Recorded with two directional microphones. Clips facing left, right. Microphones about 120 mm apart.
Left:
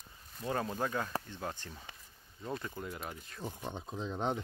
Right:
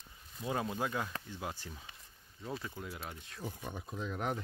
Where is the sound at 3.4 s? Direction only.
20° left (ahead or behind).